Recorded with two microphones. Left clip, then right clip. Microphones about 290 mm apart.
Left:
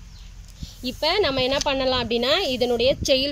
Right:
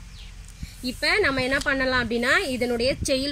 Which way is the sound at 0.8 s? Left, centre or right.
Left.